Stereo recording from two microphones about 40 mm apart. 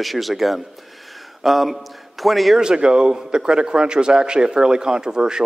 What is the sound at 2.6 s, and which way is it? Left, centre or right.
A man's voice, centre.